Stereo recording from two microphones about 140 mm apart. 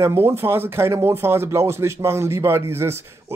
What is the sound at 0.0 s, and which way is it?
Speech, 20° right (ahead or behind).